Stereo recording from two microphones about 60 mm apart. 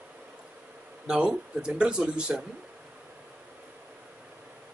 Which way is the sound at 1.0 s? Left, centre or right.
Centre.